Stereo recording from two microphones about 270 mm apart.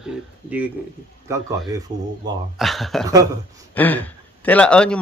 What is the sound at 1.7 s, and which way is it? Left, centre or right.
Speech, centre.